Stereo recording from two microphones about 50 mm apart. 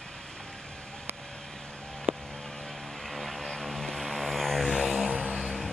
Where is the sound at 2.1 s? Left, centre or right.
Right.